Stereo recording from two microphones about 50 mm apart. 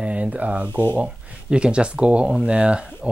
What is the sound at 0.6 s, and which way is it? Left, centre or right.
Speech, left.